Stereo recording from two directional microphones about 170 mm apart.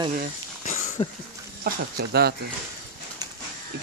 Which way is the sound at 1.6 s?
70° right (ahead or behind).